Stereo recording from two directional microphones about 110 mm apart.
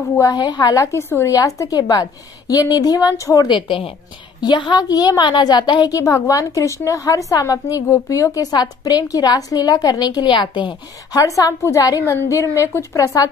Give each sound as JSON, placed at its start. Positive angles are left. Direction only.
{"t": 0.2, "sound": "a woman's voice", "side_deg": 40}
{"t": 3.4, "sound": "a woman's voice", "side_deg": 50}
{"t": 5.9, "sound": "a woman's voice", "side_deg": 30}
{"t": 11.1, "sound": "a woman's voice", "side_deg": 30}